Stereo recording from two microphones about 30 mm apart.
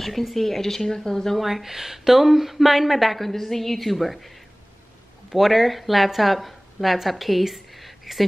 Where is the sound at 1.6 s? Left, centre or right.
Centre.